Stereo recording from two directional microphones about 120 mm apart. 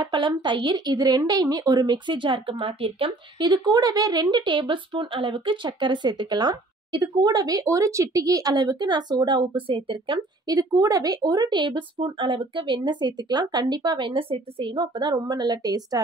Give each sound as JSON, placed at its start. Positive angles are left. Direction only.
{"t": 0.0, "sound": "speech", "side_deg": -40}
{"t": 3.4, "sound": "speech", "side_deg": -35}
{"t": 10.4, "sound": "speech", "side_deg": -30}